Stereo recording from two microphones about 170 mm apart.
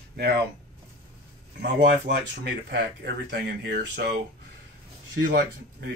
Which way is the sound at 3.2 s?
70° right (ahead or behind).